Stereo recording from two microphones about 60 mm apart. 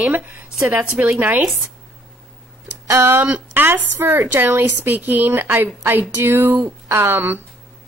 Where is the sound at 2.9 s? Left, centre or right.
Right.